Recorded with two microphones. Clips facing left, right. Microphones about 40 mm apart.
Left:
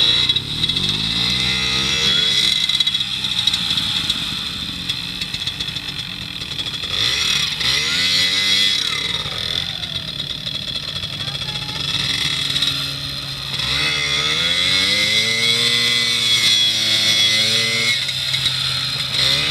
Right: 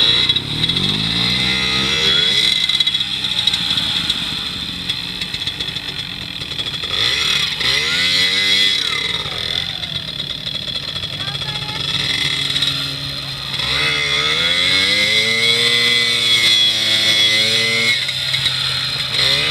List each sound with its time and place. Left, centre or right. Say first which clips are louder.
0.0 s motorcycle: right 2 dB; centre
3.4 s vehicle: right 2 dB; centre
7.0 s chainsaw: right 2 dB; centre
11.9 s vehicle: right 2 dB; centre
13.7 s a sound: right 3 dB; centre
19.1 s vehicle: right 2 dB; centre